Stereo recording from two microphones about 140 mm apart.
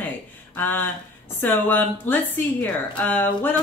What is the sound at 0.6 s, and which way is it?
Speech, 15° left (ahead or behind).